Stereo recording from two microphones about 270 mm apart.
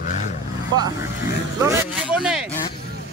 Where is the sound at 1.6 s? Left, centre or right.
Centre.